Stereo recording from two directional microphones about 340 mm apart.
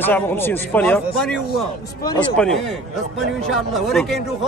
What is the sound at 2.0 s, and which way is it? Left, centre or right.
Speech, centre.